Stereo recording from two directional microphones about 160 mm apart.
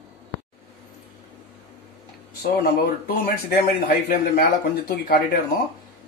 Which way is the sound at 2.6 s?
75° left (ahead or behind).